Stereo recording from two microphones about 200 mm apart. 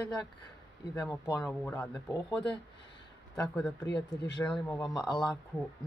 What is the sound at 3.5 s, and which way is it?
Speech, 5° left (ahead or behind).